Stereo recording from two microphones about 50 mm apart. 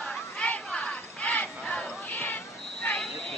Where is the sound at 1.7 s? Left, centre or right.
Left.